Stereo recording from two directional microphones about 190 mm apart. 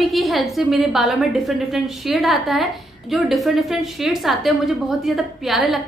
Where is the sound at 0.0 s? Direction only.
Centre (ahead or behind).